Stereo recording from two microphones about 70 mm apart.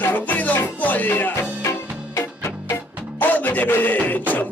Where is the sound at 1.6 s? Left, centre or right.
Left.